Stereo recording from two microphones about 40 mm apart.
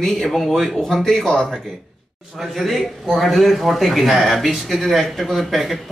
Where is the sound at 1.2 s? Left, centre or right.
Left.